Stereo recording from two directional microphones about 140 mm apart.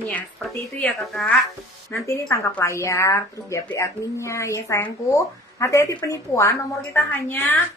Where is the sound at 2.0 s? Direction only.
20° left (ahead or behind).